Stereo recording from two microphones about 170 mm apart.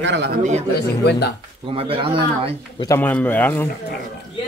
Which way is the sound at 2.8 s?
15° left (ahead or behind).